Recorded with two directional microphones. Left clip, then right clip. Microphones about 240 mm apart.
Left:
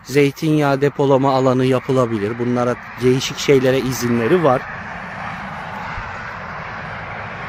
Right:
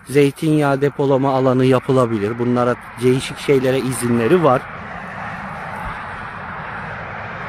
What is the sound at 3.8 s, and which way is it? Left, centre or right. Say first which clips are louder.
Speech: even; centre.